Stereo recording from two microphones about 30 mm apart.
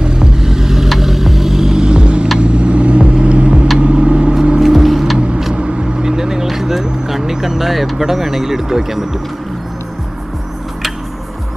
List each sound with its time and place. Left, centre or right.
0.0 s vehicle: right
1.9 s vehicle: right
4.6 s vehicle: centre
5.5 s vehicle: right
6.1 s vehicle: centre
8.1 s speech: centre